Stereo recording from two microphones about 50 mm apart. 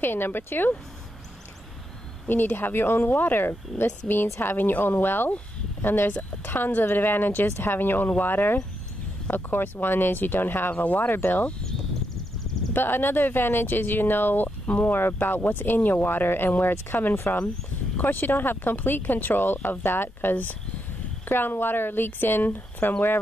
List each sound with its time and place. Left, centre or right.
0.0 s speech: left
2.2 s speech: left
11.1 s speech: left
12.7 s speech: left
16.9 s speech: left
17.9 s speech: left